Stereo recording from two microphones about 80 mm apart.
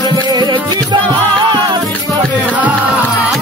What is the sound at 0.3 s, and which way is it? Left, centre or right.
Music, right.